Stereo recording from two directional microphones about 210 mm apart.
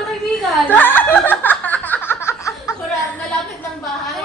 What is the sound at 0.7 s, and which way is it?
Chuckle, 10° left (ahead or behind).